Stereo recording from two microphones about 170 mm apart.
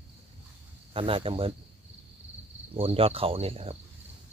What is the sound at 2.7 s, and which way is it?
Speech, 35° right (ahead or behind).